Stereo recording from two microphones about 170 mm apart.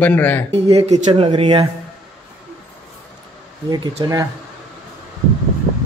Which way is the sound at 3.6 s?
25° right (ahead or behind).